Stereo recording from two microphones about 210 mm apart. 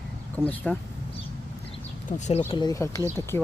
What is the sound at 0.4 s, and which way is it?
Speech, 10° right (ahead or behind).